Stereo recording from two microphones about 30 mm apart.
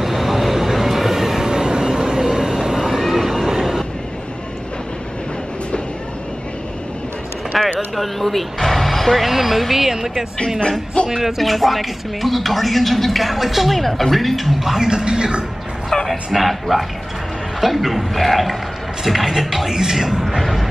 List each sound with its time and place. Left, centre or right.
0.0 s vehicle: centre
1.5 s vehicle: right; by 3.4 s centre
7.5 s a sound: centre
7.9 s speech: centre
11.2 s a woman's voice: centre
14.6 s speech: centre
14.9 s speech: right
16.1 s a woman's voice: centre